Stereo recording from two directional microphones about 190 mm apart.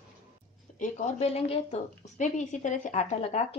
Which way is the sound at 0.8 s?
35° left (ahead or behind).